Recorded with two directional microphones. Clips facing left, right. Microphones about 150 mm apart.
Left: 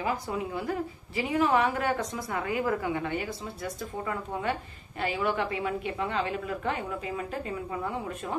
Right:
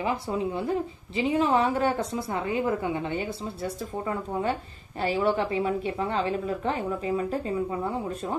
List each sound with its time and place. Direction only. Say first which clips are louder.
0.0 s a woman's voice: right 3 dB; 25° right (ahead or behind)